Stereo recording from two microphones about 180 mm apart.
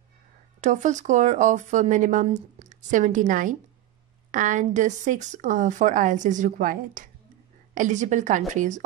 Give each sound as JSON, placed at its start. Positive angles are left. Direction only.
{"t": 0.6, "sound": "speech", "side_deg": -45}